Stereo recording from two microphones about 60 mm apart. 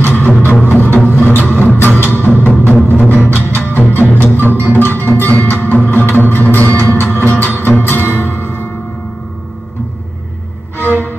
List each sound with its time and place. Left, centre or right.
0.0 s music: left
4.5 s music: right
4.7 s music: left
10.8 s music: left